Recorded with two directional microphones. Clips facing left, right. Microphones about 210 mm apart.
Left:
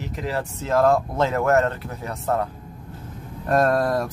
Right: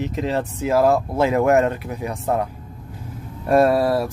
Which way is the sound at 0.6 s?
10° right (ahead or behind).